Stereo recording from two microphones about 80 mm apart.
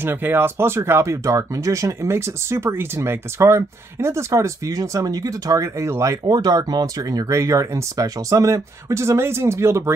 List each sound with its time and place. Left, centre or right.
0.0 s speech: right
6.2 s speech: right